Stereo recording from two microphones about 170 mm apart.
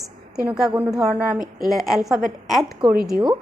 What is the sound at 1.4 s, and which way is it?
Speech, 55° right (ahead or behind).